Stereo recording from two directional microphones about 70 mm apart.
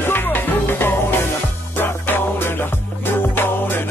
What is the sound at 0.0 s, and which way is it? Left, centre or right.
Music, left.